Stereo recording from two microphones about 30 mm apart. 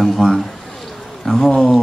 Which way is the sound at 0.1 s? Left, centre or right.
Centre.